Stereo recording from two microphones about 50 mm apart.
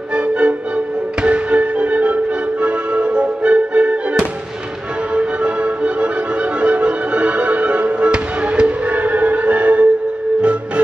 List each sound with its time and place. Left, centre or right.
0.1 s music: right